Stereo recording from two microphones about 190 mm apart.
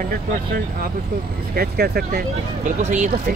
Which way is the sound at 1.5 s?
55° right (ahead or behind).